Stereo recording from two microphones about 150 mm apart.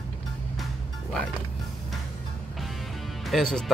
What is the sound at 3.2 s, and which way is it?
Speech, centre (ahead or behind).